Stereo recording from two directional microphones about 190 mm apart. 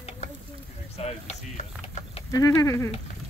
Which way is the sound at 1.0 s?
35° left (ahead or behind).